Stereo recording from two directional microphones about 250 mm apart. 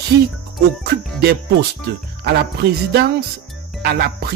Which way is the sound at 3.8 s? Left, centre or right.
Right.